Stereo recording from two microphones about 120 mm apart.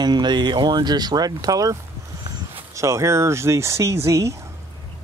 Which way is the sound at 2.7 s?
25° right (ahead or behind).